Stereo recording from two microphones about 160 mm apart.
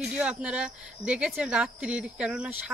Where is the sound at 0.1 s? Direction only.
5° right (ahead or behind).